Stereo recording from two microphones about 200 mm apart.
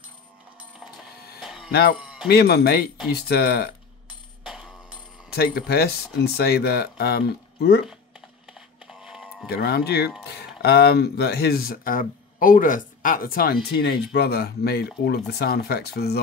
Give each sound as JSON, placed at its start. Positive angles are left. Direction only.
{"t": 1.4, "sound": "music", "side_deg": 0}
{"t": 1.7, "sound": "speech", "side_deg": 50}
{"t": 5.3, "sound": "speech", "side_deg": 50}
{"t": 8.5, "sound": "a sound", "side_deg": -5}
{"t": 9.5, "sound": "speech", "side_deg": 55}